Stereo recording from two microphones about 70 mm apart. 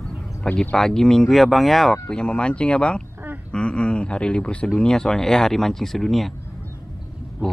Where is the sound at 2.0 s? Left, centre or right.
Centre.